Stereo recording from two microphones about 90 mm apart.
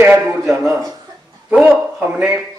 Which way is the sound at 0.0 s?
25° right (ahead or behind).